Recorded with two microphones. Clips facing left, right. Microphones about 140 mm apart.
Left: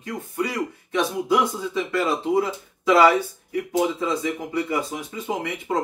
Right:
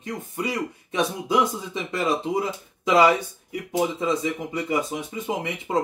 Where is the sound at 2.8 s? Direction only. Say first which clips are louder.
Left 2 dB; 20° right (ahead or behind).